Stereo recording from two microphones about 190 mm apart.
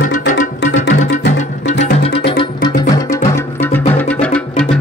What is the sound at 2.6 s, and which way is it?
Music, 15° left (ahead or behind).